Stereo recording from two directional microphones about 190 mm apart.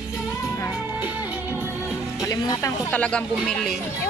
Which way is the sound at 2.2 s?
20° left (ahead or behind).